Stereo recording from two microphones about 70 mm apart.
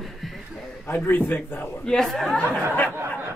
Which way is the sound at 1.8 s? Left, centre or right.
Centre.